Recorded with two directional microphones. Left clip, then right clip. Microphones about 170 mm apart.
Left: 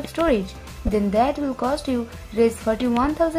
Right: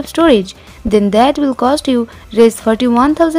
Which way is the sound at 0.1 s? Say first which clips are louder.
Right 11 dB; 45° right (ahead or behind).